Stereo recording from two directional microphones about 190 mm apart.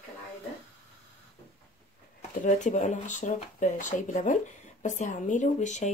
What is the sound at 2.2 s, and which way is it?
Speech, 40° left (ahead or behind).